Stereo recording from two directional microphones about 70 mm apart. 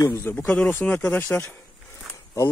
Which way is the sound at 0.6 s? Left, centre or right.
Left.